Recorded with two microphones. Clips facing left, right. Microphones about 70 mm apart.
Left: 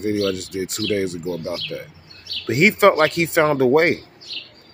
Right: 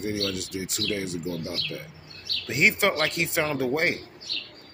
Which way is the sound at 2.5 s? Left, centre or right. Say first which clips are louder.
Left 9 dB; left.